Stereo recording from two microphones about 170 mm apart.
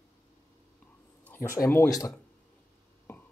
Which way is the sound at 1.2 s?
15° left (ahead or behind).